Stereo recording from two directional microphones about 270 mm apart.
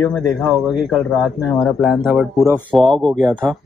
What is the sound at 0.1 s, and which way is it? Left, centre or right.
Speech, centre.